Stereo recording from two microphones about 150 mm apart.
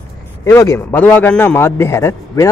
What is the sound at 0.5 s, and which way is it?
A man's voice, 20° left (ahead or behind).